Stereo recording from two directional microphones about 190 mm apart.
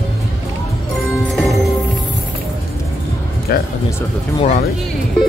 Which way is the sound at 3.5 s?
55° left (ahead or behind).